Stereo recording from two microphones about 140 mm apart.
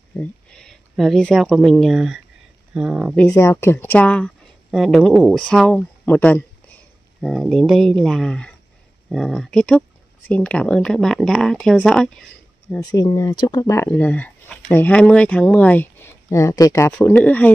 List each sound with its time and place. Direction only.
0.2 s speech: 5° left (ahead or behind)
3.3 s speech: 20° left (ahead or behind)
4.6 s speech: centre (ahead or behind)
12.8 s speech: 25° left (ahead or behind)